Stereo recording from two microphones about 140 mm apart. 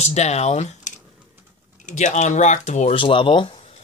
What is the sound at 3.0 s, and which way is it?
Speech, 35° left (ahead or behind).